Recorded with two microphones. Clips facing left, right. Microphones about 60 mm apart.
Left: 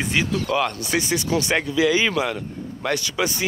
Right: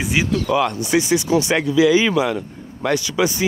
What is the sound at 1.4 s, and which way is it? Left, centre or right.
Speech, left.